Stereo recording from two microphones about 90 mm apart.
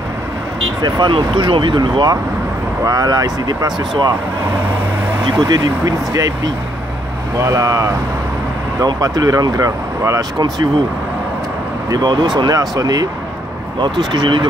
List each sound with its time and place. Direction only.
0.8 s speech: 55° right (ahead or behind)
2.8 s speech: 40° right (ahead or behind)
5.4 s speech: 45° right (ahead or behind)
7.3 s speech: 35° right (ahead or behind)
11.9 s speech: 50° right (ahead or behind)
13.7 s speech: 55° right (ahead or behind)